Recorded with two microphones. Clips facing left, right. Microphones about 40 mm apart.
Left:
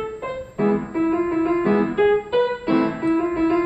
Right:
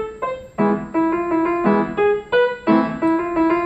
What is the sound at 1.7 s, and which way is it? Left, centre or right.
Keyboard, centre.